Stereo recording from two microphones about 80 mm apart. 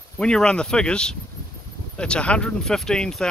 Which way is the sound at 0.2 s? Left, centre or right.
Centre.